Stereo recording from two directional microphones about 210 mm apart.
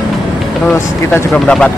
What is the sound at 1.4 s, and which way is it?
Speech, 5° left (ahead or behind).